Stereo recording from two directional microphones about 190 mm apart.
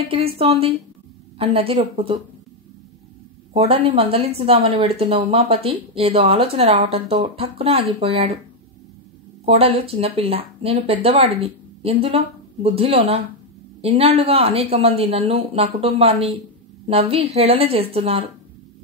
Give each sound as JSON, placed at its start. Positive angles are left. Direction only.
{"t": 0.1, "sound": "speech", "side_deg": -30}
{"t": 3.5, "sound": "speech", "side_deg": -30}
{"t": 9.5, "sound": "speech", "side_deg": -30}